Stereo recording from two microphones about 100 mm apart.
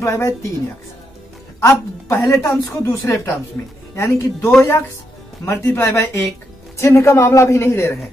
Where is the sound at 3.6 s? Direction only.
25° left (ahead or behind).